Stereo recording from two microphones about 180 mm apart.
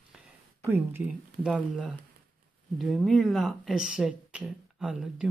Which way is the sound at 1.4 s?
5° right (ahead or behind).